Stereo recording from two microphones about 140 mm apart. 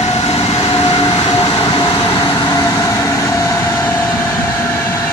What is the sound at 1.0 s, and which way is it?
Train, 30° left (ahead or behind).